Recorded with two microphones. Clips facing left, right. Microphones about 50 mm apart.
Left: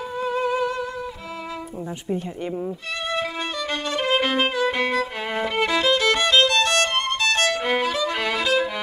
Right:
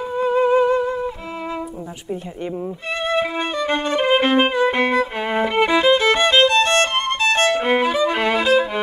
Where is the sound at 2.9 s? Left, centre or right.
Right.